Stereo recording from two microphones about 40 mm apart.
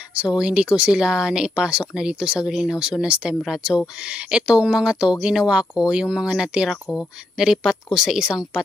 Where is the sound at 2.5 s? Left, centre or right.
Centre.